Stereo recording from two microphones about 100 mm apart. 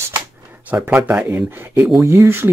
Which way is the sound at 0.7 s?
15° right (ahead or behind).